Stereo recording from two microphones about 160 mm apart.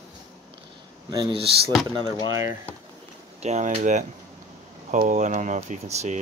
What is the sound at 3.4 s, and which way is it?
Speech, 45° right (ahead or behind).